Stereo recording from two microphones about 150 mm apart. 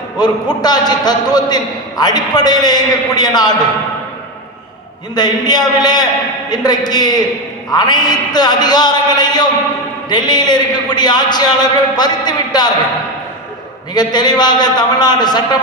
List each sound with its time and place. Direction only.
0.2 s a man's voice: 25° left (ahead or behind)
5.1 s a man's voice: 25° left (ahead or behind)
13.9 s a man's voice: 30° left (ahead or behind)